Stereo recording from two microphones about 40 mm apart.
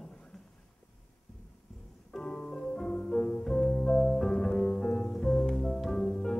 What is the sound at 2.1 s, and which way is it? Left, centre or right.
Music, centre.